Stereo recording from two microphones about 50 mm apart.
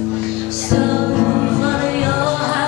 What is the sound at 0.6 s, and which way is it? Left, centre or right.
Music, centre.